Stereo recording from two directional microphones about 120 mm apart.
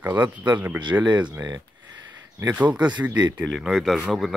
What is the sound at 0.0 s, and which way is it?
Speech, 15° right (ahead or behind).